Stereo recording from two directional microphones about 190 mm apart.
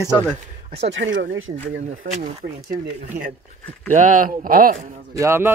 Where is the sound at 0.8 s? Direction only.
75° right (ahead or behind); by 1.5 s 90° right.